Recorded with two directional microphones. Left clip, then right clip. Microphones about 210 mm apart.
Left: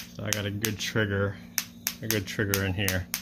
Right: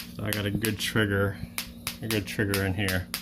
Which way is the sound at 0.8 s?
10° right (ahead or behind).